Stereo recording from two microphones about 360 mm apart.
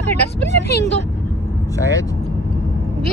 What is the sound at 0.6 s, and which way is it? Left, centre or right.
Speech, left.